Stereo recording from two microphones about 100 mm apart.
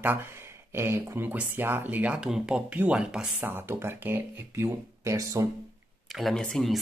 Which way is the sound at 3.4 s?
20° right (ahead or behind).